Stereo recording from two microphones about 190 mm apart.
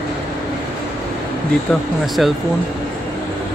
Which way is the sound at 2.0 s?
Centre (ahead or behind).